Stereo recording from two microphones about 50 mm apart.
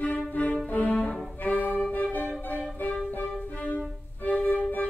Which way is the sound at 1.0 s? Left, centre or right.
Left.